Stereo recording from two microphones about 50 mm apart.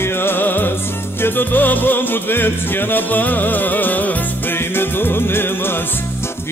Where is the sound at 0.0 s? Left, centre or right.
Left.